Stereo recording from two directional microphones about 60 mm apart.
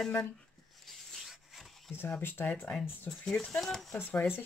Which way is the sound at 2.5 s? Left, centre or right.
Left.